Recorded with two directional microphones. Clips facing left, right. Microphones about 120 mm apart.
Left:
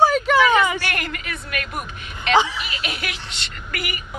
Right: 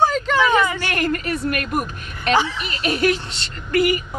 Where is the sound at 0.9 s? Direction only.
40° right (ahead or behind).